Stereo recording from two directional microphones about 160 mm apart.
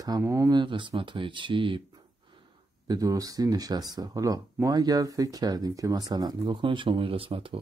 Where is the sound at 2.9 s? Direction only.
20° right (ahead or behind).